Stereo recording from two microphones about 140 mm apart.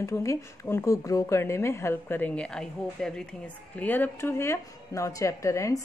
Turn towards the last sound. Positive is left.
turn(degrees=20)  # may be behind; listen again after turning